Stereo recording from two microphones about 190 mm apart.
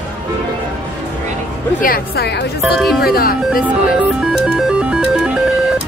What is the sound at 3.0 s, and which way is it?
Speech, 50° left (ahead or behind).